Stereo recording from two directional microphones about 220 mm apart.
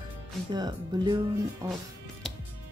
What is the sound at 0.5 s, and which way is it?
Speech, 20° right (ahead or behind).